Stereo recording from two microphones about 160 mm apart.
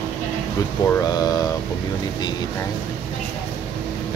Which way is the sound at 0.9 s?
25° left (ahead or behind).